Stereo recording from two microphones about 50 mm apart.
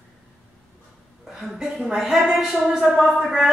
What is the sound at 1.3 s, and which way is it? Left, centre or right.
A woman's voice, centre.